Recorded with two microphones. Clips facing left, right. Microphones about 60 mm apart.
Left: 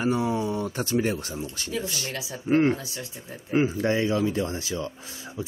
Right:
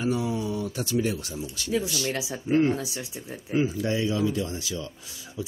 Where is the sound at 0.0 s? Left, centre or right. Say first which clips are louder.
Left 2 dB; left.